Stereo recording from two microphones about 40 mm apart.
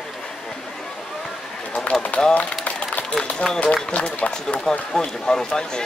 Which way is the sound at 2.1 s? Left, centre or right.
Left.